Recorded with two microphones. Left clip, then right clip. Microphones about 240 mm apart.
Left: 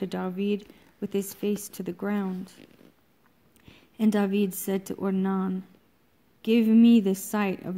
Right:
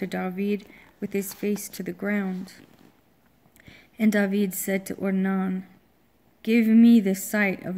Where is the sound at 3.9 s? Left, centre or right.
Centre.